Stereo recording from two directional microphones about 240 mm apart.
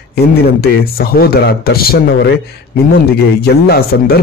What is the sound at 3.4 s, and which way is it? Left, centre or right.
Speech, left.